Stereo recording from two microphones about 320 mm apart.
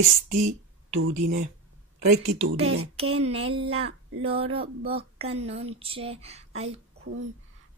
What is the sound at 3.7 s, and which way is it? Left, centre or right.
Speech, centre.